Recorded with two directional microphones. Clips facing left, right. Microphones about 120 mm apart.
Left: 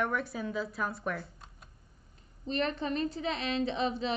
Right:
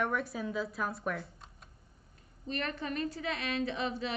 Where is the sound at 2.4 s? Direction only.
25° left (ahead or behind).